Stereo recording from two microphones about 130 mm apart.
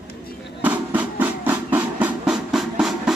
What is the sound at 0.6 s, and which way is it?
Music, 10° right (ahead or behind).